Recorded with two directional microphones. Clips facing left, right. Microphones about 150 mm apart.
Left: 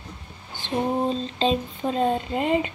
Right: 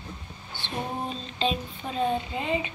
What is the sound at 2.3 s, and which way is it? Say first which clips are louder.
Speech: left 7 dB; 45° left (ahead or behind).